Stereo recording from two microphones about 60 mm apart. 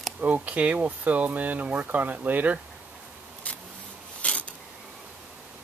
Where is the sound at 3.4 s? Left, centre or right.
Left.